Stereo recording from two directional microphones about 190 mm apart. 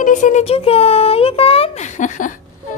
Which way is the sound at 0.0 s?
40° left (ahead or behind).